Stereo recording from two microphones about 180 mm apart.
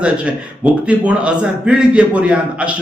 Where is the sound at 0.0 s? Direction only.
5° right (ahead or behind).